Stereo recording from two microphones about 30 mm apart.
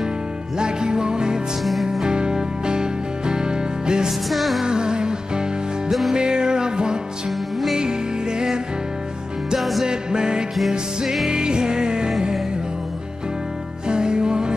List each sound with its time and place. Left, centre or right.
0.6 s music: right
1.6 s music: centre
2.0 s music: right
4.3 s music: centre
4.6 s music: right
5.9 s music: centre
6.1 s music: right
9.6 s music: centre
9.8 s music: right
13.8 s music: right